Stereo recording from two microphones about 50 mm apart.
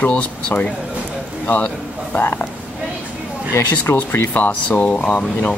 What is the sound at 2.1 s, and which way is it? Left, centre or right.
Speech, left.